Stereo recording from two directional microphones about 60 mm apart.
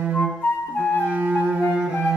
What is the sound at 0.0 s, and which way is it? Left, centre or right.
Flute, right.